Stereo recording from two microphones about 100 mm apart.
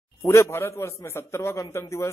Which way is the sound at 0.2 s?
30° left (ahead or behind).